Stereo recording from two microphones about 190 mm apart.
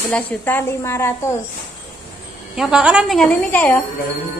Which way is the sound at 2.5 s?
5° right (ahead or behind).